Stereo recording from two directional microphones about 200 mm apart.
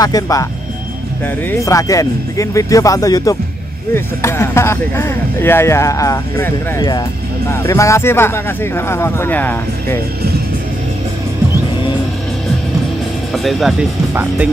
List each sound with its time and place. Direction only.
0.0 s speech: 15° left (ahead or behind)
1.5 s speech: 15° left (ahead or behind)
13.3 s speech: centre (ahead or behind)